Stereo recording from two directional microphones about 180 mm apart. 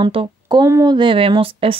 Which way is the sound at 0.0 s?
30° right (ahead or behind).